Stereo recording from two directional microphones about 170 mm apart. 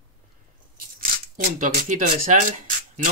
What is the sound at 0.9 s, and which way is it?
Speech, 55° right (ahead or behind).